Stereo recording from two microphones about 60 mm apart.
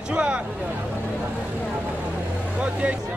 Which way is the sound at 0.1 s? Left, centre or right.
Centre.